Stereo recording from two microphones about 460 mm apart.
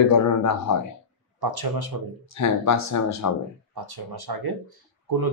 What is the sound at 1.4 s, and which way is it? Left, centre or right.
Speech, right.